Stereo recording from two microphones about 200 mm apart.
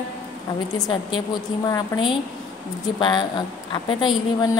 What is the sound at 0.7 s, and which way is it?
Speech, 20° left (ahead or behind).